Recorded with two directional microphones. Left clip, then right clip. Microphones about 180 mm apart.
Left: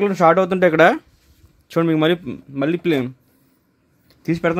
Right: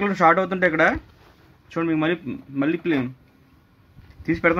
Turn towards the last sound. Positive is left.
turn(degrees=55)  # may be behind; listen again after turning